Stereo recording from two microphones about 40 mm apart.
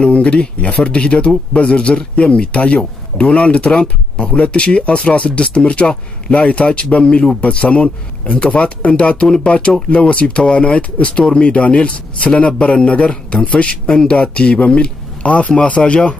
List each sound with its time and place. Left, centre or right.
0.0 s speech: left
3.3 s speech: centre
3.8 s speech: left